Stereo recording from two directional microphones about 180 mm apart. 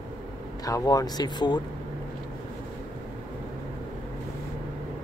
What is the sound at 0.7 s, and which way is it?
Speech, 20° left (ahead or behind).